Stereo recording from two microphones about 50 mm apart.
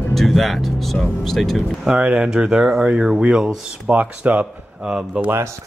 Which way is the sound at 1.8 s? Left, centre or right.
Centre.